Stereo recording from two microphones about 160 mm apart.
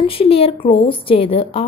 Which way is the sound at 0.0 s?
35° left (ahead or behind).